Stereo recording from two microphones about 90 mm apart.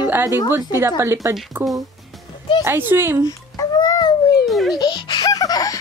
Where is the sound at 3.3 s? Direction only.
45° left (ahead or behind).